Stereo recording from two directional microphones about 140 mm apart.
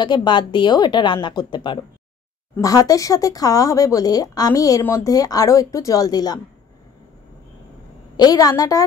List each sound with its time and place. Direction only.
0.0 s a woman's voice: 30° left (ahead or behind)
8.2 s speech: 25° left (ahead or behind)